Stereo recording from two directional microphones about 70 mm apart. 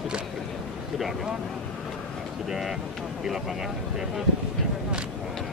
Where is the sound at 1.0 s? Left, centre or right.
Centre.